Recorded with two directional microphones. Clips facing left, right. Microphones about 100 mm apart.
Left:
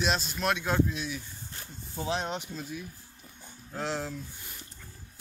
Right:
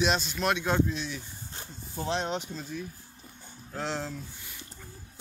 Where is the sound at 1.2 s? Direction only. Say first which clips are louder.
Right 1 dB; 25° right (ahead or behind).